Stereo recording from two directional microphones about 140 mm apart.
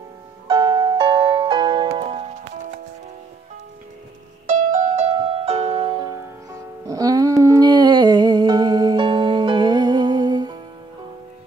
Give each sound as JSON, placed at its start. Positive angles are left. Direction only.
{"t": 0.5, "sound": "music", "side_deg": -35}
{"t": 4.5, "sound": "music", "side_deg": -65}
{"t": 6.9, "sound": "music", "side_deg": -25}